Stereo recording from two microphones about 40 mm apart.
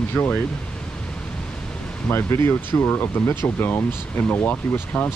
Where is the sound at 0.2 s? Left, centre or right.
Left.